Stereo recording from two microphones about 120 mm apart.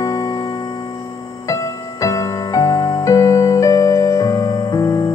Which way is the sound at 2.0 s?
30° left (ahead or behind).